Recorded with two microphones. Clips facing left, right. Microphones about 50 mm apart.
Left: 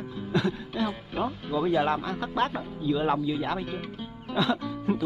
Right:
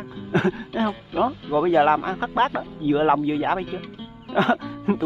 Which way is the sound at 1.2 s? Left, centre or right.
Centre.